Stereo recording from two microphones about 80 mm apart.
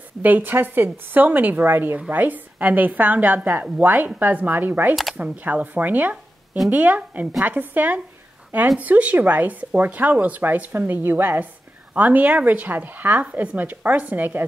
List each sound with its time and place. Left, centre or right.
0.2 s a woman's voice: right